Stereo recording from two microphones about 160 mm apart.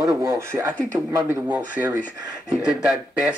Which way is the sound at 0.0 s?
15° right (ahead or behind).